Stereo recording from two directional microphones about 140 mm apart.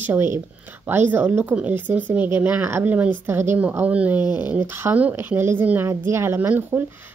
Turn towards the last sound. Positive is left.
turn(degrees=-15)  # may be behind; listen again after turning